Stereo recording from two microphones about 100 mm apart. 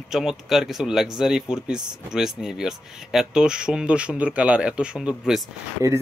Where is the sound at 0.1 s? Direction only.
5° right (ahead or behind).